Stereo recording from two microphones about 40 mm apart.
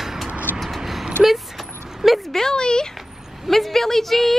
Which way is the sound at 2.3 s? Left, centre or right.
Centre.